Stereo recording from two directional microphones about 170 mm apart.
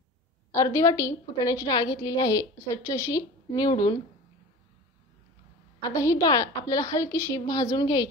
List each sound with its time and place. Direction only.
0.5 s a woman's voice: 20° left (ahead or behind)
5.8 s a woman's voice: 20° left (ahead or behind)